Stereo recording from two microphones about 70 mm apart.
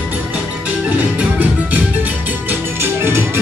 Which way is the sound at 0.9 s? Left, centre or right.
Right.